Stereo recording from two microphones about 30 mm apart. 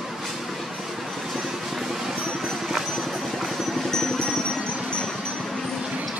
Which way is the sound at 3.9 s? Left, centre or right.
Centre.